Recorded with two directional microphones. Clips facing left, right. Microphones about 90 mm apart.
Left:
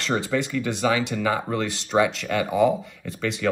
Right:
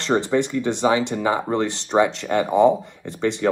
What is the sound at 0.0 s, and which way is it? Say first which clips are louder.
Speech: right 5 dB; 30° right (ahead or behind).